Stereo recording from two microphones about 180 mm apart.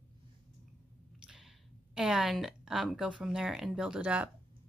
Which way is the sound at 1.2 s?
5° right (ahead or behind).